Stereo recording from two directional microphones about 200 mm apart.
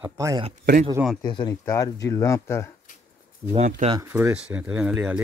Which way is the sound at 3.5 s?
30° right (ahead or behind).